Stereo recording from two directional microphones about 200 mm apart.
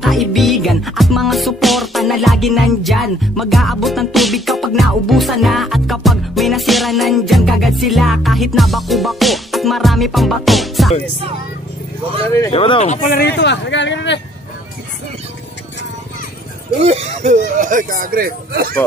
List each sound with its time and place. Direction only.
0.0 s music: centre (ahead or behind)
12.3 s speech: 15° left (ahead or behind)
12.5 s speech: 30° left (ahead or behind); by 14.2 s 65° left (ahead or behind)
16.8 s speech: 30° right (ahead or behind); by 18.8 s 50° right (ahead or behind)